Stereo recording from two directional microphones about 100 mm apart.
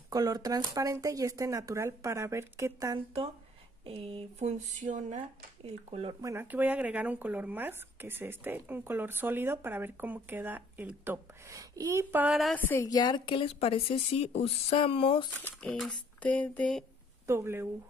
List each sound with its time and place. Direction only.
0.1 s speech: 40° right (ahead or behind)
3.8 s speech: 65° right (ahead or behind)
5.7 s speech: 85° right
6.4 s speech: 15° right (ahead or behind)
11.4 s speech: 35° right (ahead or behind)
12.3 s a woman's voice: centre (ahead or behind)
12.5 s a woman's voice: 20° left (ahead or behind)
12.8 s a woman's voice: 40° left (ahead or behind); by 15.2 s 65° left (ahead or behind)
15.6 s a woman's voice: 5° left (ahead or behind)
16.2 s a sound: 15° left (ahead or behind)
17.3 s speech: 25° right (ahead or behind)